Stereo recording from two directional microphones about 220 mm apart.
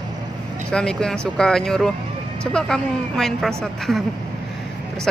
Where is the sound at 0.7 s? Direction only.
5° left (ahead or behind).